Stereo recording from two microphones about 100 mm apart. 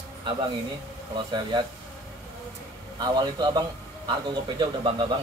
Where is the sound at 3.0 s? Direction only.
45° right (ahead or behind).